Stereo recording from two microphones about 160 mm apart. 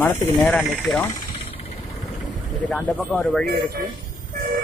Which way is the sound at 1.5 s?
35° left (ahead or behind).